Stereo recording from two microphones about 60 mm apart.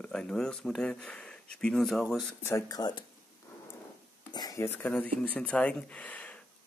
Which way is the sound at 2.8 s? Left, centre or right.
Left.